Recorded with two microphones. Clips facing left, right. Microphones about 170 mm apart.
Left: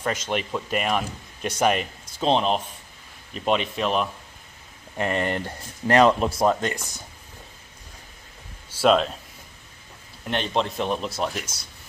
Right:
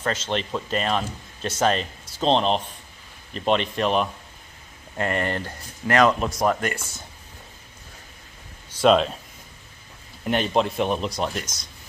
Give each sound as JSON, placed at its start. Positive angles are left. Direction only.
{"t": 0.0, "sound": "a man's voice", "side_deg": 10}
{"t": 4.9, "sound": "speech", "side_deg": 20}
{"t": 8.6, "sound": "speech", "side_deg": 5}
{"t": 10.2, "sound": "a man's voice", "side_deg": -5}